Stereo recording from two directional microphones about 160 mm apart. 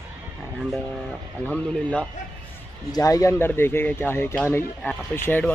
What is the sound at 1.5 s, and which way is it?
Speech, 5° left (ahead or behind).